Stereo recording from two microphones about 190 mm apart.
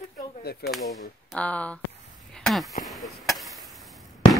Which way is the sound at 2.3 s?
Centre (ahead or behind).